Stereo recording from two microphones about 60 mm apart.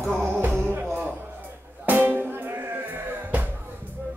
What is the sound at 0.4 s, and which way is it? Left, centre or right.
Music, right.